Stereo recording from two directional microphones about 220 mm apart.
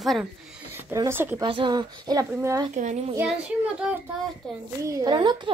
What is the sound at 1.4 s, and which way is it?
Speech, 20° right (ahead or behind).